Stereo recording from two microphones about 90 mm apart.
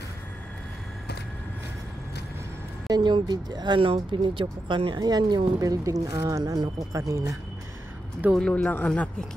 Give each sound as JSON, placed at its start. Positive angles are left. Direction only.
{"t": 2.9, "sound": "speech", "side_deg": -55}
{"t": 3.8, "sound": "speech", "side_deg": -80}
{"t": 4.2, "sound": "speech", "side_deg": -65}
{"t": 8.3, "sound": "speech", "side_deg": 5}
{"t": 8.6, "sound": "speech", "side_deg": 15}